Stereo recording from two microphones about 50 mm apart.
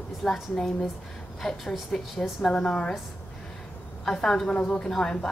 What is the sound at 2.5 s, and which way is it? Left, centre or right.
Speech, centre.